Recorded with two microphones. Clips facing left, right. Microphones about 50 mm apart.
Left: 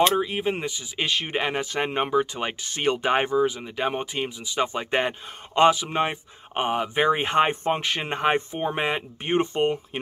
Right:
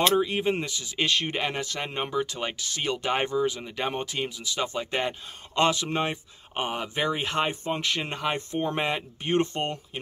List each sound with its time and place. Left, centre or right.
0.1 s speech: centre; by 3.3 s left
3.3 s speech: centre
5.7 s speech: centre
7.1 s speech: left
7.8 s speech: left
8.4 s speech: centre